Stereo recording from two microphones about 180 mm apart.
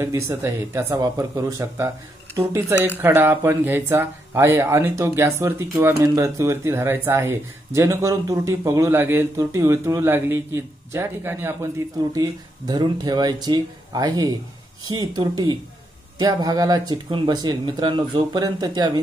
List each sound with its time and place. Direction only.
0.0 s speech: 15° right (ahead or behind)